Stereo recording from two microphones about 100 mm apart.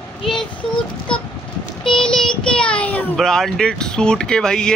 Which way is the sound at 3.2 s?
5° left (ahead or behind).